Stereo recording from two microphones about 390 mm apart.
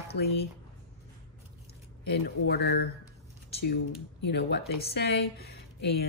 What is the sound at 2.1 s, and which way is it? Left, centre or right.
Speech, left.